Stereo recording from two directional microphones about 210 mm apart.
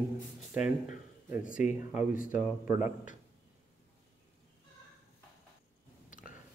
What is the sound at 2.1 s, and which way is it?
Speech, 40° left (ahead or behind).